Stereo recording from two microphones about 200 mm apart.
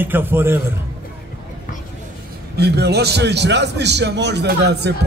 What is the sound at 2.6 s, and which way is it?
A man's voice, 55° right (ahead or behind).